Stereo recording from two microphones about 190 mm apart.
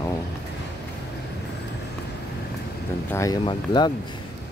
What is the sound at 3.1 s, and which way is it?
Speech, 20° left (ahead or behind).